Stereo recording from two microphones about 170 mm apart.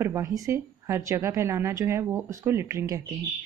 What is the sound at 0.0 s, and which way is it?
Speech, 15° right (ahead or behind).